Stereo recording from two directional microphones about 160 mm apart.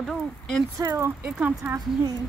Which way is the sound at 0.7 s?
20° right (ahead or behind).